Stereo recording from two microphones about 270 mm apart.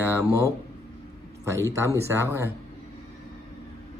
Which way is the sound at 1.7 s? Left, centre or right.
Centre.